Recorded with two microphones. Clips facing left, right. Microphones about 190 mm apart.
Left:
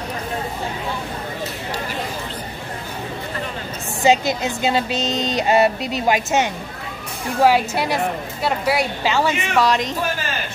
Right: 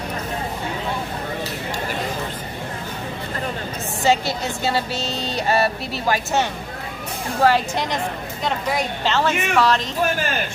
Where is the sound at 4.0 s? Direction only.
15° left (ahead or behind).